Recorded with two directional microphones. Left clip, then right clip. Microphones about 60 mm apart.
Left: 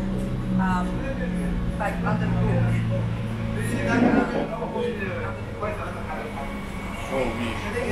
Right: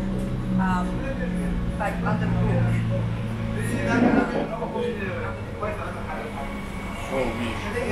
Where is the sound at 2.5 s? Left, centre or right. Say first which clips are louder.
Even; centre.